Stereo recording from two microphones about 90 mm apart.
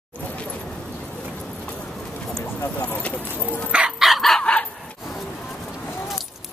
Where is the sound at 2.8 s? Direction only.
15° left (ahead or behind).